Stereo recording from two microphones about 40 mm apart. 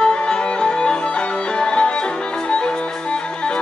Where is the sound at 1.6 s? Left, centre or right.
Left.